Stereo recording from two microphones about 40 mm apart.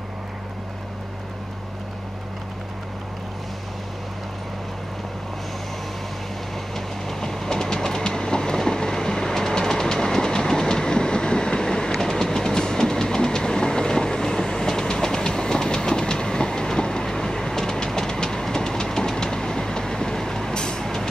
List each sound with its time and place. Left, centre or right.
6.7 s train: centre